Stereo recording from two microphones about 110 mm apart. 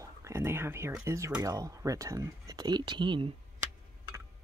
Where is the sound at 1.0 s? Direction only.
25° right (ahead or behind); by 3.3 s 45° right (ahead or behind).